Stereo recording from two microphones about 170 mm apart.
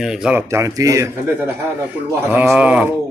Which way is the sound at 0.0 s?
5° right (ahead or behind).